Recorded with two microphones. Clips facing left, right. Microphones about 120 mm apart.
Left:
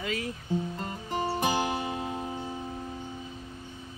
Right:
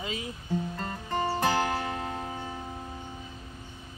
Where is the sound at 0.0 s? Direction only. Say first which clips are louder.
Left 3 dB; 55° left (ahead or behind).